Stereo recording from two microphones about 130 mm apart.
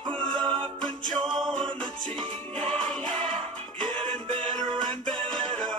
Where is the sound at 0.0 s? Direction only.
35° right (ahead or behind).